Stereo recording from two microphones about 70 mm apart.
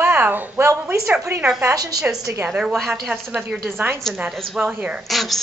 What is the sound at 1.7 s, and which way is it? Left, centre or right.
Speech, right.